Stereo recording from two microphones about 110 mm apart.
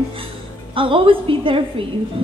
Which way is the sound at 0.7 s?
50° right (ahead or behind).